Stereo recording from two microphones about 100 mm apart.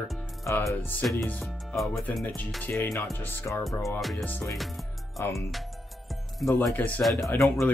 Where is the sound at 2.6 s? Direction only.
20° left (ahead or behind).